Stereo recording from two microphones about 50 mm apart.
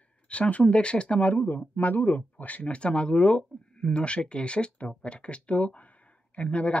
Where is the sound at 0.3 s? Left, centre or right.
Left.